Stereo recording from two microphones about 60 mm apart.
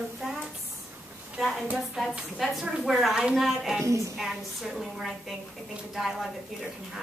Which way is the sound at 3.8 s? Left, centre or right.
Right.